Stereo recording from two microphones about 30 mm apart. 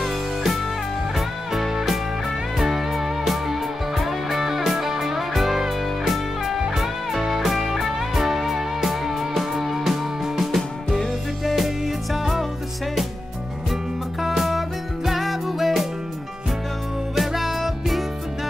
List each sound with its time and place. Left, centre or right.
1.1 s music: centre
14.2 s music: centre
17.1 s music: centre